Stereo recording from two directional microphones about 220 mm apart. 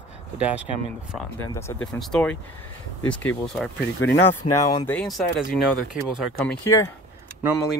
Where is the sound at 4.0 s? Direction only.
60° left (ahead or behind).